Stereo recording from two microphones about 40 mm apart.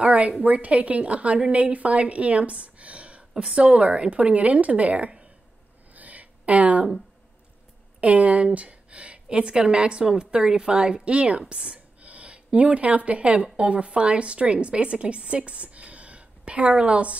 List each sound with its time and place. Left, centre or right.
0.0 s a woman's voice: right
5.9 s a sound: right
8.0 s a woman's voice: right